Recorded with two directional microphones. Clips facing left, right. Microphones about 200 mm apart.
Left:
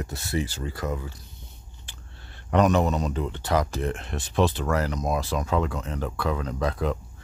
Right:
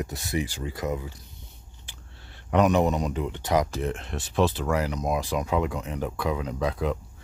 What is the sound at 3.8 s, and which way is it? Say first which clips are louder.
Speech: left 1 dB; centre (ahead or behind).